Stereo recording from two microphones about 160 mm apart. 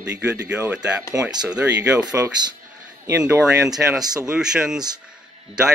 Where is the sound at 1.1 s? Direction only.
5° right (ahead or behind).